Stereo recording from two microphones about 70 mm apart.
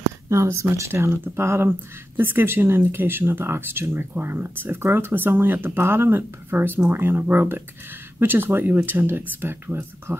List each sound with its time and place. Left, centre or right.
0.3 s speech: right